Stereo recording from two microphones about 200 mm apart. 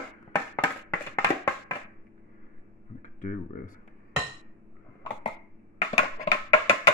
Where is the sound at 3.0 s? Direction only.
40° left (ahead or behind).